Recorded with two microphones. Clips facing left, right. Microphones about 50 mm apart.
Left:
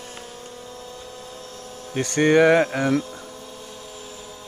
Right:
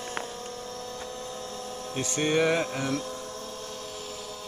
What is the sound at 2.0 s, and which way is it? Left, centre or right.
Speech, left.